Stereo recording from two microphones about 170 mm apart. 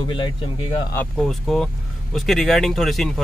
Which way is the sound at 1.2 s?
Centre (ahead or behind).